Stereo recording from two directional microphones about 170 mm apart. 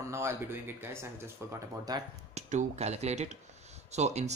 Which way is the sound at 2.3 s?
40° right (ahead or behind).